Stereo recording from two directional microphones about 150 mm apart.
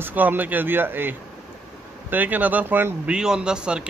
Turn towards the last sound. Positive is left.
turn(degrees=-5)  # may be behind; listen again after turning